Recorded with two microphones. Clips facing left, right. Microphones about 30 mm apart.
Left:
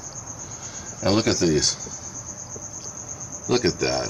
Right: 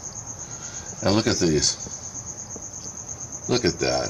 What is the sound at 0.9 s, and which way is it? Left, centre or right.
Speech, centre.